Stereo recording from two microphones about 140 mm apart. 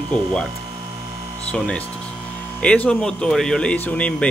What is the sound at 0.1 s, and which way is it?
Speech, 5° left (ahead or behind).